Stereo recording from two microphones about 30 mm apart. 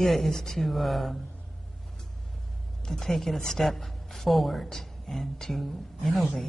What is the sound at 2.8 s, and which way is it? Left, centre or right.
A woman's voice, centre.